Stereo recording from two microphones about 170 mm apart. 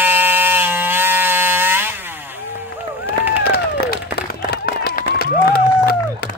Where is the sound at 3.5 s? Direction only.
65° left (ahead or behind).